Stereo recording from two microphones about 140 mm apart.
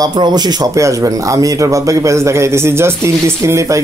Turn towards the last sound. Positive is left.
turn(degrees=-20)  # may be behind; listen again after turning